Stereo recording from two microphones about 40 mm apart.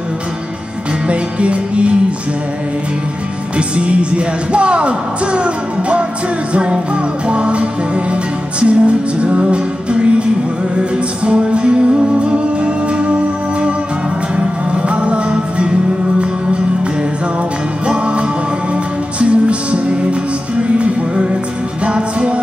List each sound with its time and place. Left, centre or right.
1.0 s music: right
3.5 s music: right
14.3 s music: right
17.8 s music: right